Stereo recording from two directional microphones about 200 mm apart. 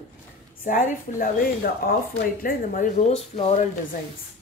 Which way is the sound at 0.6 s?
45° left (ahead or behind).